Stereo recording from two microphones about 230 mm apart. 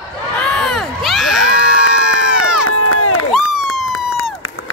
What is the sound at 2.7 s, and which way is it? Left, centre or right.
Crowd, left.